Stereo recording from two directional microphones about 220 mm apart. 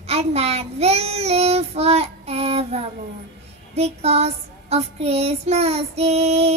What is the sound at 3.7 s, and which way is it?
Child singing, 30° right (ahead or behind).